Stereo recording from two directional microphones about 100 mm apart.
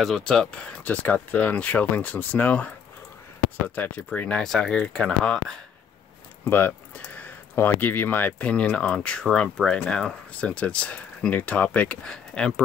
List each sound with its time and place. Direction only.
0.0 s speech: 5° left (ahead or behind)
6.5 s speech: 20° left (ahead or behind)